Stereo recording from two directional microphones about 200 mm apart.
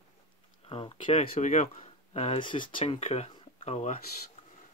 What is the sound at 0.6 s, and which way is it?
Speech, 25° left (ahead or behind).